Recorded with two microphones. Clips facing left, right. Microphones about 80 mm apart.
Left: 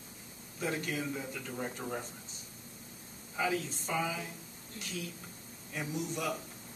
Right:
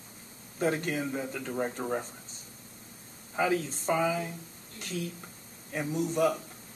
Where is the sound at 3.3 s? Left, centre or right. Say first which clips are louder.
Right 5 dB; right.